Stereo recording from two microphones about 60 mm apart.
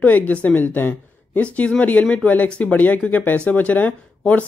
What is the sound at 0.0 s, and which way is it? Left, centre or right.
Speech, left.